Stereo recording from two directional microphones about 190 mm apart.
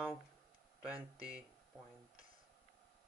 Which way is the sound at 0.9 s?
20° left (ahead or behind).